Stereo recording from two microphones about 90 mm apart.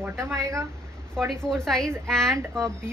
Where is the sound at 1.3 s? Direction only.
5° left (ahead or behind).